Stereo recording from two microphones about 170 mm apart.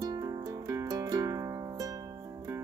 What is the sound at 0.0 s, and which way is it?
Music, 20° right (ahead or behind).